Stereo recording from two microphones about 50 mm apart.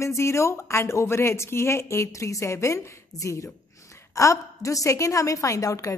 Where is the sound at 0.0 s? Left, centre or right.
Left.